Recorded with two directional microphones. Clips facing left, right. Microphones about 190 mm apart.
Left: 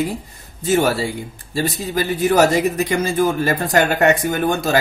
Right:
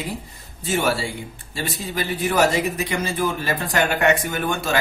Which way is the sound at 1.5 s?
40° left (ahead or behind).